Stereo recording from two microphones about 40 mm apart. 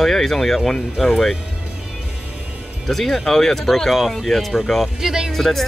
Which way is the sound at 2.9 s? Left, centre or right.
Centre.